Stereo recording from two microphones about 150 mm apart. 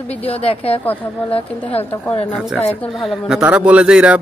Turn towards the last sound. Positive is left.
turn(degrees=-10)  # may be behind; listen again after turning